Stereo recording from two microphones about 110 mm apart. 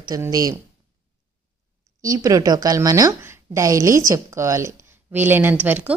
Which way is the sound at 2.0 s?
35° right (ahead or behind).